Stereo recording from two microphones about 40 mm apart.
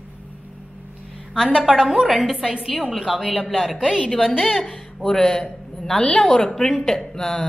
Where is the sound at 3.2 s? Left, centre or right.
Centre.